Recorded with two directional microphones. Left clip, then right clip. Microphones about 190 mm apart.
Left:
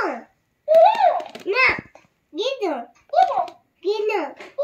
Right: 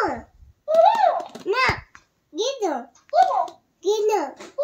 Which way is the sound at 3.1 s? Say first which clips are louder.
Even; 20° right (ahead or behind).